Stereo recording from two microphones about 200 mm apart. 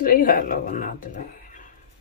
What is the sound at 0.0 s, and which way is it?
Speech, 45° left (ahead or behind).